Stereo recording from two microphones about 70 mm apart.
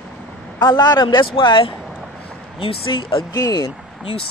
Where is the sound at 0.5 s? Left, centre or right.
Left.